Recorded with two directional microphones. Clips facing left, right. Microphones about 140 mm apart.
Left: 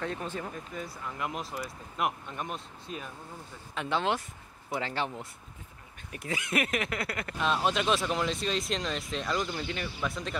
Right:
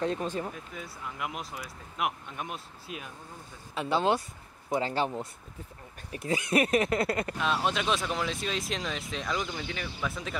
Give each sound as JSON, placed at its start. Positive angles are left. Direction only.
{"t": 0.0, "sound": "speech", "side_deg": -20}
{"t": 0.7, "sound": "speech", "side_deg": 0}
{"t": 4.8, "sound": "speech", "side_deg": -40}
{"t": 7.3, "sound": "speech", "side_deg": 0}